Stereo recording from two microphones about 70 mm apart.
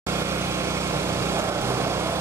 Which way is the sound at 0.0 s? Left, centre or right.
Right.